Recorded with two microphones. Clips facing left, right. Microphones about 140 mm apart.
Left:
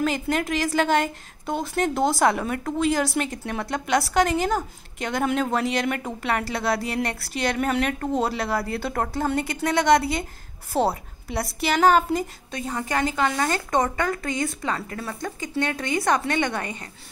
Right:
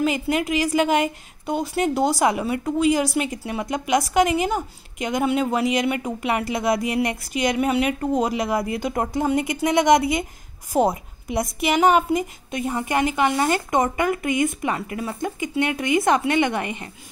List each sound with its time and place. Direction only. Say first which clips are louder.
0.0 s a woman's voice: right 2 dB; 5° right (ahead or behind)